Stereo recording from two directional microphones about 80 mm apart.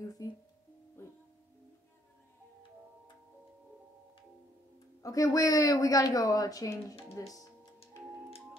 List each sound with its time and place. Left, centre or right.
0.2 s a woman's voice: left
5.0 s a woman's voice: left